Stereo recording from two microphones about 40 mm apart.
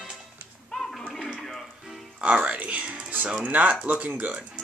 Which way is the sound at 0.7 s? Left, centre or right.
Centre.